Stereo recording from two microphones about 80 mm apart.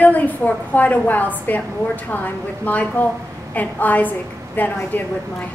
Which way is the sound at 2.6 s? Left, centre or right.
Left.